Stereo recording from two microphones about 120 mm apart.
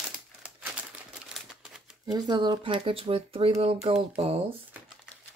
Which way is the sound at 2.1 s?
35° right (ahead or behind).